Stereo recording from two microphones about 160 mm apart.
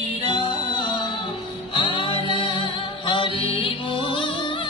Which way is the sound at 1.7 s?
30° left (ahead or behind).